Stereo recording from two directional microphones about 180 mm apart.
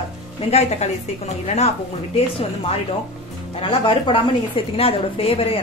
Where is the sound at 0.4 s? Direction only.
35° left (ahead or behind).